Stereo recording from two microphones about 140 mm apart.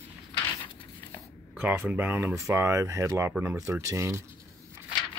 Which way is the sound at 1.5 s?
15° right (ahead or behind).